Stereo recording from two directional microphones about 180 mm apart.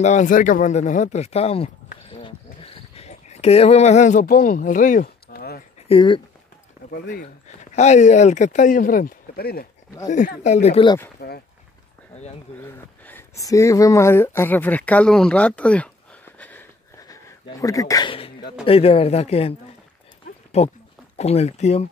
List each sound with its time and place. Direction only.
0.0 s speech: 40° left (ahead or behind)
2.0 s a sound: 30° left (ahead or behind); by 5.6 s 60° left (ahead or behind)
5.9 s speech: 30° left (ahead or behind)
6.9 s speech: 50° left (ahead or behind)
10.0 s speech: 45° left (ahead or behind)
11.1 s speech: 60° left (ahead or behind)
12.5 s speech: 10° left (ahead or behind); by 19.5 s 35° left (ahead or behind)
20.5 s speech: 35° left (ahead or behind)